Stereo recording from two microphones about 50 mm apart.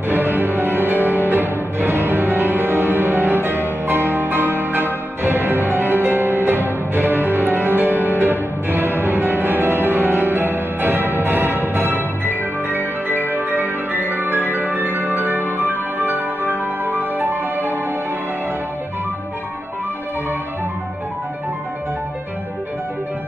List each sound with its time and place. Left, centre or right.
0.1 s music: right